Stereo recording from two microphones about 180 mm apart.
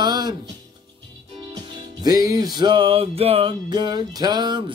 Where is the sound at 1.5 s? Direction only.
20° right (ahead or behind).